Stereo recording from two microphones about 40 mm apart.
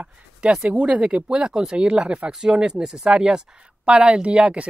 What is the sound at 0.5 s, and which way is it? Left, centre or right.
Speech, right.